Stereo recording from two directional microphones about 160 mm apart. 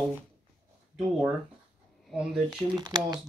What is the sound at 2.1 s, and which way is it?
Speech, 5° right (ahead or behind).